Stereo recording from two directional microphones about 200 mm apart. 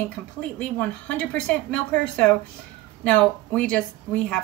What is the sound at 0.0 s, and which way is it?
Speech, 5° left (ahead or behind).